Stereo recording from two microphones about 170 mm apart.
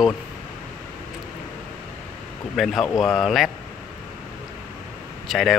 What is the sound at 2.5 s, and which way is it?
Speech, centre (ahead or behind).